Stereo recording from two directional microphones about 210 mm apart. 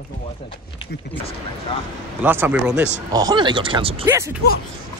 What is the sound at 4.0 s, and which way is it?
Speech, 10° right (ahead or behind).